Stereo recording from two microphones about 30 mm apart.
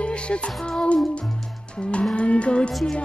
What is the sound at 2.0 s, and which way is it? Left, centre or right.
Music, left.